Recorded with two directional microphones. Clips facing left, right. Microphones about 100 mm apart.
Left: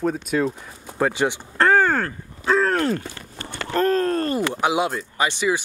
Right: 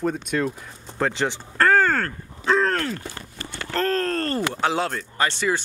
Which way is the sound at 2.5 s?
5° left (ahead or behind).